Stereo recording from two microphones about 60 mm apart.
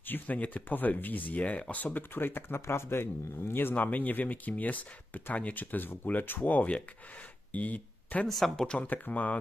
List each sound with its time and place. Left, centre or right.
0.0 s speech: left
8.3 s speech: centre
8.8 s speech: left